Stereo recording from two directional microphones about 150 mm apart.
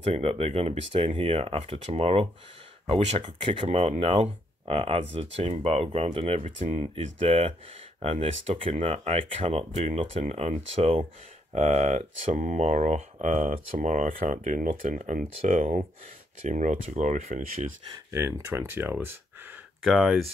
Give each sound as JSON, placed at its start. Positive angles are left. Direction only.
{"t": 0.0, "sound": "speech", "side_deg": -45}
{"t": 6.4, "sound": "speech", "side_deg": -55}
{"t": 6.8, "sound": "speech", "side_deg": -40}
{"t": 13.7, "sound": "speech", "side_deg": -55}
{"t": 18.1, "sound": "speech", "side_deg": -15}
{"t": 19.8, "sound": "speech", "side_deg": 0}